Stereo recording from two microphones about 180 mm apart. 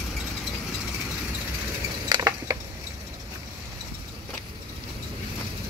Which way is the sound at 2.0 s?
20° right (ahead or behind).